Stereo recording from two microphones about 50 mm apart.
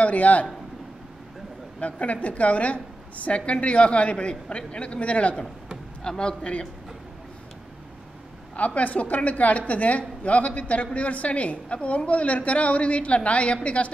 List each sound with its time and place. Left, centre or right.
0.0 s a woman's voice: left
1.8 s a woman's voice: left
8.5 s a woman's voice: left